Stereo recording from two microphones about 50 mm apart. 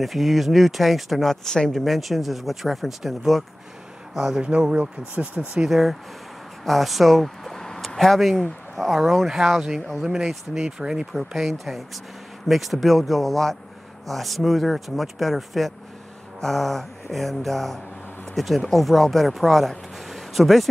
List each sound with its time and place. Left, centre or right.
0.0 s speech: centre
4.4 s speech: centre
5.6 s speech: centre
11.3 s speech: centre